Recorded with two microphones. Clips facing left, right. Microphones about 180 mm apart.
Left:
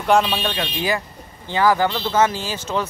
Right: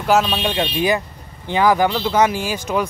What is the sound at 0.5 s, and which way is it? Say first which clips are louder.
Speech: right 5 dB; 20° right (ahead or behind).